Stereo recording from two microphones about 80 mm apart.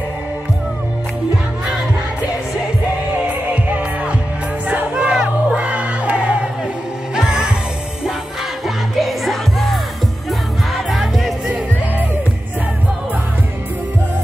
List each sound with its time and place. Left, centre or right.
3.3 s music: centre
4.9 s crowd: centre
7.2 s music: centre
8.6 s music: centre
10.9 s music: centre